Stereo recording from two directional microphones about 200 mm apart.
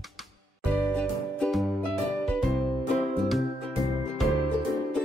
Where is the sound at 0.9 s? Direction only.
5° left (ahead or behind).